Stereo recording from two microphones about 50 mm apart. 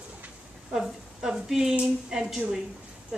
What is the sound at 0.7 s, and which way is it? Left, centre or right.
A woman's voice, centre.